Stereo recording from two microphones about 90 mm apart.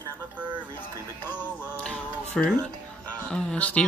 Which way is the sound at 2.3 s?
10° left (ahead or behind).